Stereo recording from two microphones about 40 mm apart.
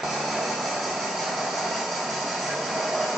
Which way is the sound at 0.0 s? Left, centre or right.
Centre.